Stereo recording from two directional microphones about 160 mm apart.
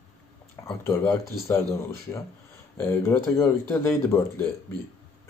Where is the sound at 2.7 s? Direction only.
15° left (ahead or behind).